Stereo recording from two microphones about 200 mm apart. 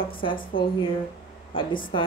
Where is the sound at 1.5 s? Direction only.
25° left (ahead or behind).